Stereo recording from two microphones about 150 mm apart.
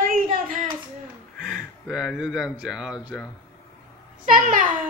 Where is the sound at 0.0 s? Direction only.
65° right (ahead or behind).